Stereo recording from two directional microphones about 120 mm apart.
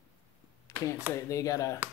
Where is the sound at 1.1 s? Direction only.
25° left (ahead or behind).